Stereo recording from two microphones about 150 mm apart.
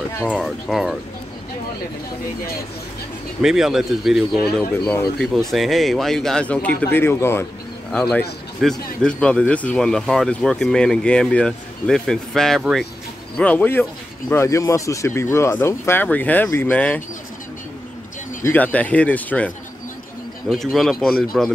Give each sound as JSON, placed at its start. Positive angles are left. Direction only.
{"t": 0.2, "sound": "speech", "side_deg": 0}
{"t": 3.4, "sound": "speech", "side_deg": -5}
{"t": 7.9, "sound": "speech", "side_deg": 5}
{"t": 18.4, "sound": "speech", "side_deg": 10}